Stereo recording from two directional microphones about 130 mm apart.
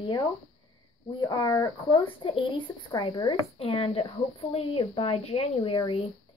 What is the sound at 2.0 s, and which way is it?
Speech, 45° left (ahead or behind).